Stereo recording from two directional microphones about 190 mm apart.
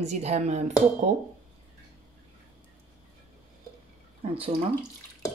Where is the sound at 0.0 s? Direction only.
35° right (ahead or behind).